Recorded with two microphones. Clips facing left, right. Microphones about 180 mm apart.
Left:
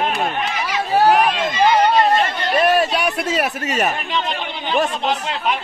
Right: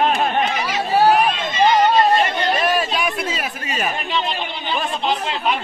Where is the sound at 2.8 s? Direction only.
70° left (ahead or behind).